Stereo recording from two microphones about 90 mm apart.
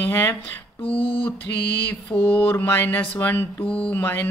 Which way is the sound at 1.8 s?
15° left (ahead or behind).